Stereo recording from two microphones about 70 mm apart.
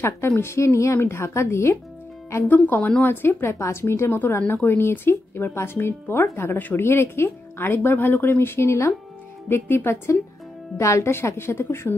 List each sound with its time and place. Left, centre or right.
0.4 s speech: left
2.4 s speech: left
9.5 s speech: left
10.8 s speech: left